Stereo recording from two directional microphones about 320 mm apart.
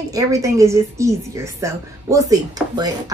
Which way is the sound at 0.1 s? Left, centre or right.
Centre.